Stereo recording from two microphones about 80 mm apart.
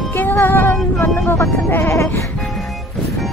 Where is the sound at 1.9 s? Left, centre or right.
Left.